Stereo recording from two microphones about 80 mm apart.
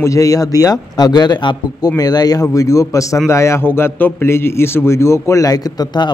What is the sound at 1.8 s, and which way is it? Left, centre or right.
A man's voice, left.